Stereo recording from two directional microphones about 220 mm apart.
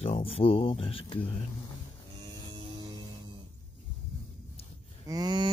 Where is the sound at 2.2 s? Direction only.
20° right (ahead or behind).